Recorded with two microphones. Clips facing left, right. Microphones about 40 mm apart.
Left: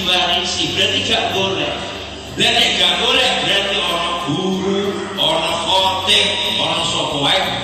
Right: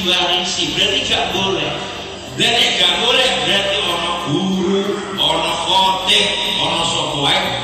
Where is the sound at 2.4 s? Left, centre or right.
Centre.